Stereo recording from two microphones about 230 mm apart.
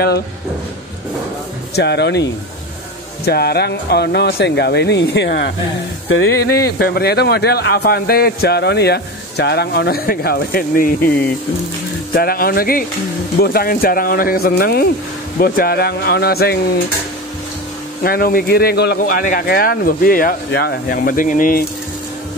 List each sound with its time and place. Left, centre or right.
1.8 s speech: left
3.3 s speech: left
6.5 s speech: left
12.2 s speech: left
18.0 s speech: left